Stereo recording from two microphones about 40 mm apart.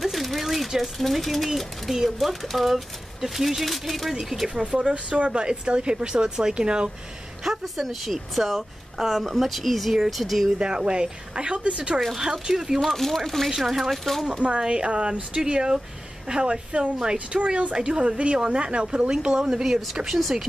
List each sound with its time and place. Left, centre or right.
0.0 s a sound: centre
0.9 s speech: centre
4.6 s speech: right
7.4 s speech: centre
10.8 s speech: right
12.8 s speech: centre
14.6 s speech: right; by 20.4 s centre